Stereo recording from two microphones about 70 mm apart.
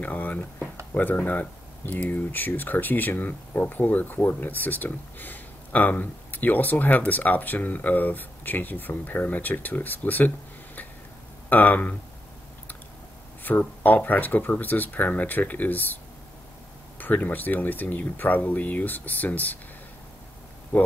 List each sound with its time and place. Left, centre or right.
0.0 s speech: left
11.4 s speech: left
13.4 s speech: left
17.0 s speech: left
20.7 s speech: left